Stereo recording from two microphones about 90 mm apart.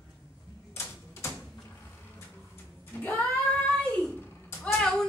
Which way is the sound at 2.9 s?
20° left (ahead or behind).